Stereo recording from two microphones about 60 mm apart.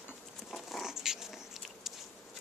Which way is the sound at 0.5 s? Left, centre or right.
Centre.